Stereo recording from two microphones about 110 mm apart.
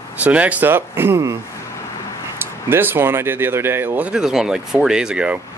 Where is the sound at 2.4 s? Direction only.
20° right (ahead or behind).